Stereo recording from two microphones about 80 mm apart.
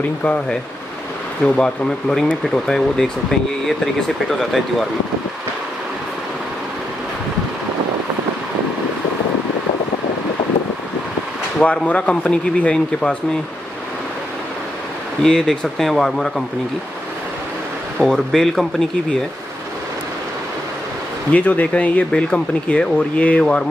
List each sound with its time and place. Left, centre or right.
1.4 s speech: centre
11.6 s speech: centre
15.2 s speech: centre
17.9 s speech: centre
21.3 s speech: centre